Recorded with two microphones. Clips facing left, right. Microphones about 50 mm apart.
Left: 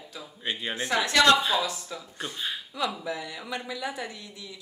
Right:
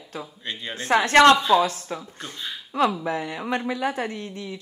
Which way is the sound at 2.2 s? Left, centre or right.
Centre.